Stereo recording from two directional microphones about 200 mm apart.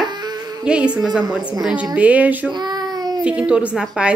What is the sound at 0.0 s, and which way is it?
Music, 20° right (ahead or behind).